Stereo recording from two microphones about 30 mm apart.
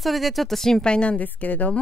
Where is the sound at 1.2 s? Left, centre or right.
Left.